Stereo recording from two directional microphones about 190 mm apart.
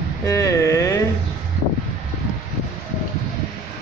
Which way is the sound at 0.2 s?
15° left (ahead or behind).